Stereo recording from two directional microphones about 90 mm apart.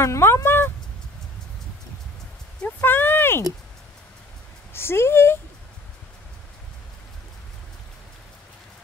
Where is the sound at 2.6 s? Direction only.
25° left (ahead or behind).